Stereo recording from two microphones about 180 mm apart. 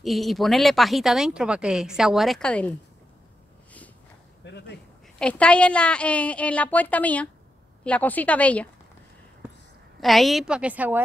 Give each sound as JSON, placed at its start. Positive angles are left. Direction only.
{"t": 0.0, "sound": "speech", "side_deg": 0}
{"t": 4.5, "sound": "speech", "side_deg": 70}
{"t": 5.2, "sound": "a woman's voice", "side_deg": 5}
{"t": 9.9, "sound": "speech", "side_deg": 0}